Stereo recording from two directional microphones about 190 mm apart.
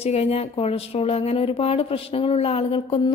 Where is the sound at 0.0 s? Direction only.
35° left (ahead or behind).